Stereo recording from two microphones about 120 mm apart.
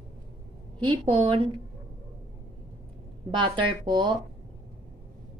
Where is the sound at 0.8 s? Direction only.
45° right (ahead or behind).